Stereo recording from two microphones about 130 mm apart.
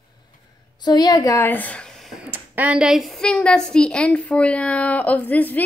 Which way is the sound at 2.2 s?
10° right (ahead or behind).